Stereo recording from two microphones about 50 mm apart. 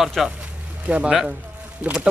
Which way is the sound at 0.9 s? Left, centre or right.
Right.